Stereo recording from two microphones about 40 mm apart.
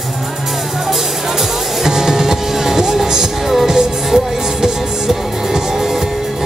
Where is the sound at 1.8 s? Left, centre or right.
Centre.